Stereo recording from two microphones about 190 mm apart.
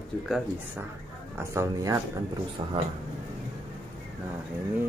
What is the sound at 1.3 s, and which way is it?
A man's voice, 15° right (ahead or behind).